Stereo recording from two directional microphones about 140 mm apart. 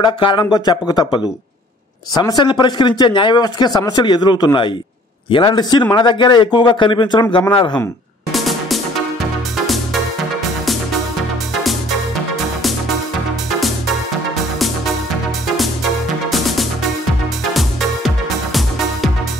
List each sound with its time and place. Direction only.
0.0 s speech: 35° left (ahead or behind)
8.3 s music: centre (ahead or behind)
13.6 s music: centre (ahead or behind)
15.4 s music: centre (ahead or behind)